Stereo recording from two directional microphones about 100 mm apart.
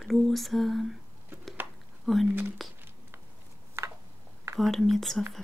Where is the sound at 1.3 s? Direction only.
25° right (ahead or behind).